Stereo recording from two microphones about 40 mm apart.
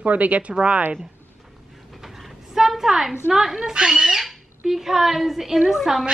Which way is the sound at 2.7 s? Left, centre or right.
Centre.